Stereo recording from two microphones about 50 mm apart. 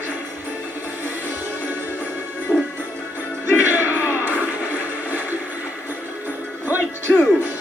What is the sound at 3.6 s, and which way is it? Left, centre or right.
Music, right.